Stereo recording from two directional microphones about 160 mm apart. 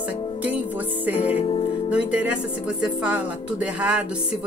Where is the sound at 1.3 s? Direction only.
35° left (ahead or behind).